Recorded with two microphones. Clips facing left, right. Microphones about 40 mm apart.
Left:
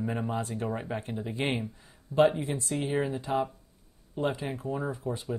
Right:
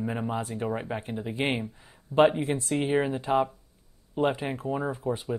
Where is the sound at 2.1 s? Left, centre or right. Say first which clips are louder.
Right 3 dB; right.